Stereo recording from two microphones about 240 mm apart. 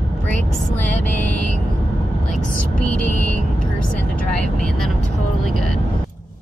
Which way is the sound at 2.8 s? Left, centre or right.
Left.